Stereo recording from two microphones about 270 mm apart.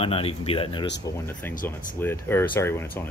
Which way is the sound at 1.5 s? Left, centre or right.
Left.